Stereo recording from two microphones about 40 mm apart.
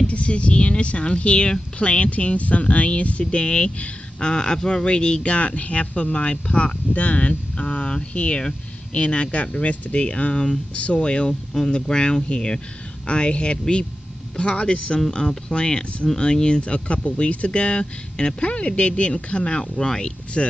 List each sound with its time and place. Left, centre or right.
0.0 s speech: left
15.0 s speech: centre